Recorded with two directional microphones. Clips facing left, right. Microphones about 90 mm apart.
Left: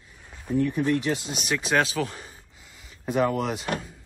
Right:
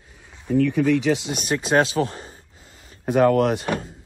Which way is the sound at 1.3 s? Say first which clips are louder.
Right 5 dB; 40° right (ahead or behind).